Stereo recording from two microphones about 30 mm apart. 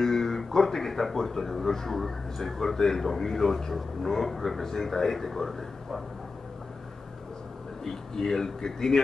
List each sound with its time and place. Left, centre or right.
0.0 s a man's voice: centre
7.8 s a man's voice: centre